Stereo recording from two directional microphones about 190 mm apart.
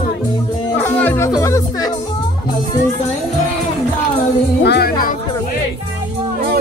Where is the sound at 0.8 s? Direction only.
10° left (ahead or behind).